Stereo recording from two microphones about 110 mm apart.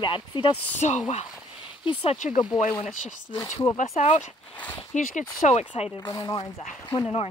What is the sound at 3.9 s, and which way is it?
Speech, 85° left.